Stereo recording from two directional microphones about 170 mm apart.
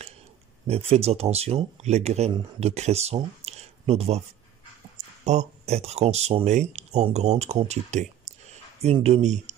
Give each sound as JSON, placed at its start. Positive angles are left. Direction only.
{"t": 0.7, "sound": "speech", "side_deg": -35}
{"t": 5.2, "sound": "speech", "side_deg": -45}